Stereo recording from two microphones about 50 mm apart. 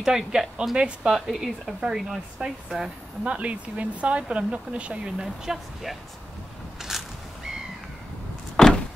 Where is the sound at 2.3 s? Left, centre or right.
Centre.